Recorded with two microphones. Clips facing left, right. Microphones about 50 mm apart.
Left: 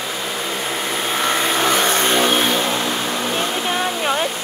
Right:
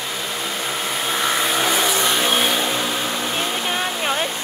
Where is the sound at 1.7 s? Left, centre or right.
Left.